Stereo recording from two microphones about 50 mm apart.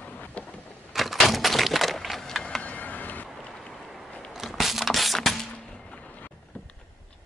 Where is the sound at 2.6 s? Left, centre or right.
Left.